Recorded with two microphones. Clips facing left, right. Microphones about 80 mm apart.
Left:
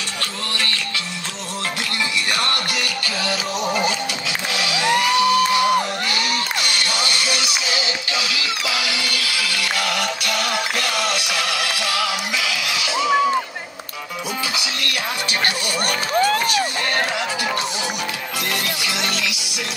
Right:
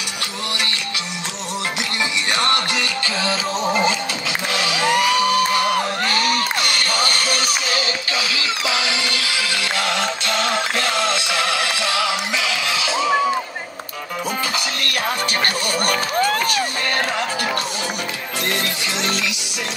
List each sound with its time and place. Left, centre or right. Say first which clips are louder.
2.3 s music: right 3 dB; right
14.5 s music: right 2 dB; right
18.9 s music: right 1 dB; right